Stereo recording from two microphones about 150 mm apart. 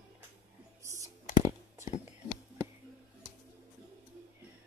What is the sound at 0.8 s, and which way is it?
Clicking, 20° right (ahead or behind).